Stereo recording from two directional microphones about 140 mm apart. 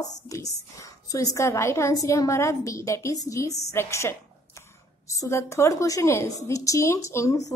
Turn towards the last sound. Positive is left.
turn(degrees=25)  # may be behind; listen again after turning